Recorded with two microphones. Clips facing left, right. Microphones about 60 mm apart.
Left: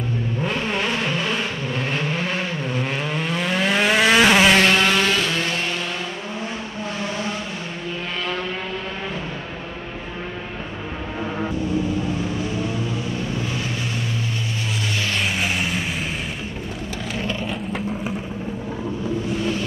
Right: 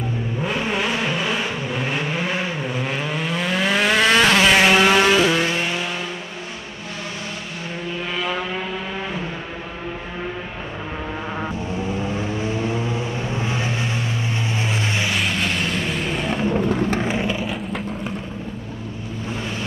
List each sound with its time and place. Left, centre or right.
0.4 s vehicle: centre
4.6 s vehicle: centre
12.1 s vehicle: right
15.3 s vehicle: centre
16.3 s music: right
17.0 s vehicle: right
17.3 s vehicle: centre